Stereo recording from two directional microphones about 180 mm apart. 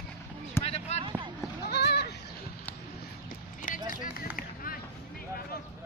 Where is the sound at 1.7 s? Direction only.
65° left (ahead or behind).